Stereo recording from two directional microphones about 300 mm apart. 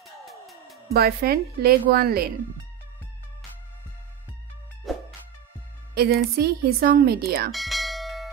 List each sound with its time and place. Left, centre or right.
0.0 s music: centre
0.9 s speech: right
4.9 s music: centre
5.9 s speech: right
7.5 s bell: centre